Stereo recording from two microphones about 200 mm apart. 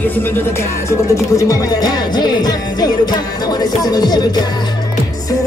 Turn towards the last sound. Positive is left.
turn(degrees=20)  # may be behind; listen again after turning